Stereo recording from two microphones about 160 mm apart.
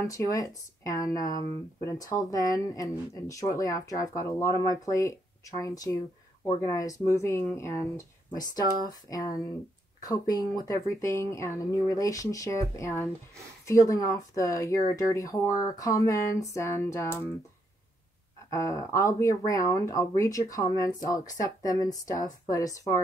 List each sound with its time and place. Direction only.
0.0 s speech: 20° left (ahead or behind)
18.5 s speech: 20° left (ahead or behind)